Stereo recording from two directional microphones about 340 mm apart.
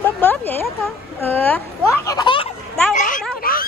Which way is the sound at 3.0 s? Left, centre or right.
Left.